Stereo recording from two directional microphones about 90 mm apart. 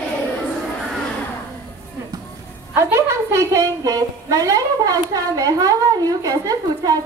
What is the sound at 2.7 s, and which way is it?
A woman's voice, 30° right (ahead or behind).